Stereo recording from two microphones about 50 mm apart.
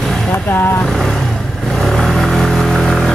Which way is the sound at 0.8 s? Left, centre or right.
Centre.